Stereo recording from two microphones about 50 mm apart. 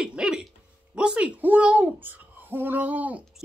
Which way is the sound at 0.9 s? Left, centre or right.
Right.